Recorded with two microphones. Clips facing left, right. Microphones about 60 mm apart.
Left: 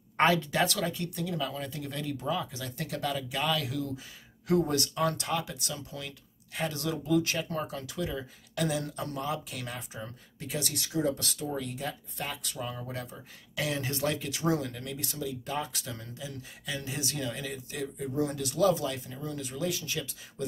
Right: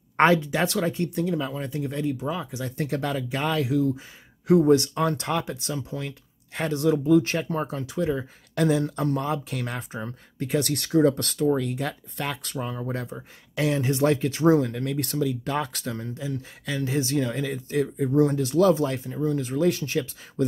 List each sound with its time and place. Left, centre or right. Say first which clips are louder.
0.2 s speech: right 5 dB; right
2.8 s speech: right 5 dB; right
3.6 s speech: right 10 dB; right
6.7 s speech: right 10 dB; right
15.8 s speech: right 9 dB; right
18.3 s speech: right 6 dB; right